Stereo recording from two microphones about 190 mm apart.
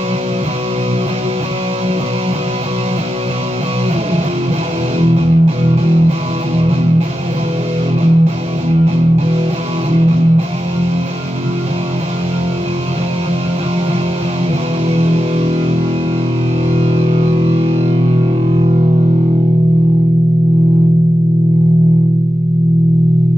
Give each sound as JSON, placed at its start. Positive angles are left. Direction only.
{"t": 5.0, "sound": "music", "side_deg": -35}
{"t": 14.9, "sound": "music", "side_deg": -35}
{"t": 16.7, "sound": "music", "side_deg": -35}